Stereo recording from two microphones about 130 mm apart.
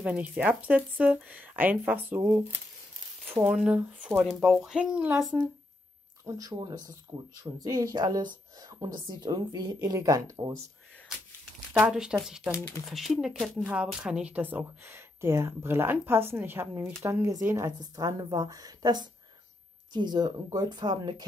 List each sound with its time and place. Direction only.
0.0 s speech: 10° right (ahead or behind)
6.2 s a woman's voice: 25° right (ahead or behind)
11.8 s speech: 5° right (ahead or behind)
12.4 s speech: 20° left (ahead or behind)
12.9 s a woman's voice: centre (ahead or behind); by 21.3 s 35° right (ahead or behind)